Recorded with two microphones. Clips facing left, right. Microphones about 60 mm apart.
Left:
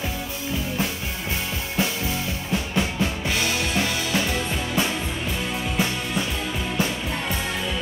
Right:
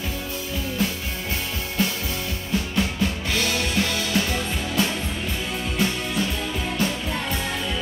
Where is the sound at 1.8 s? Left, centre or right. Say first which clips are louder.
Left 1 dB; centre.